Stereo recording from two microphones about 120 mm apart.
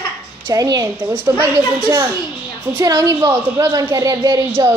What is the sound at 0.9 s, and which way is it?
A woman's voice, 20° right (ahead or behind).